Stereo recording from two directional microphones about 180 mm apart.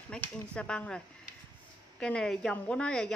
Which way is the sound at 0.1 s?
5° left (ahead or behind).